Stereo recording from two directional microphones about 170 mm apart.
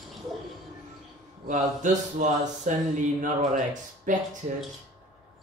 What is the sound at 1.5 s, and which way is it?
A man's voice, 50° right (ahead or behind).